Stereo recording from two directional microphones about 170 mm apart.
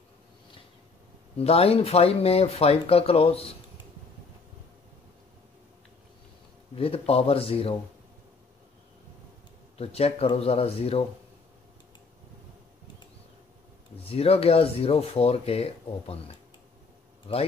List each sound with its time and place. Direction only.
1.4 s speech: 35° left (ahead or behind)
6.7 s speech: 35° left (ahead or behind)
9.8 s speech: 35° left (ahead or behind)
14.0 s speech: 35° left (ahead or behind)